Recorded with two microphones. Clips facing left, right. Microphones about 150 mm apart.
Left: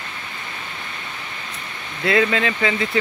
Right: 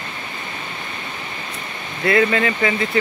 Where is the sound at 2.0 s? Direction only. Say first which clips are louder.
Right 2 dB; 15° left (ahead or behind).